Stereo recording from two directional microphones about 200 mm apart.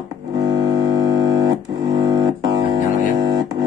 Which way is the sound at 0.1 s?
20° right (ahead or behind).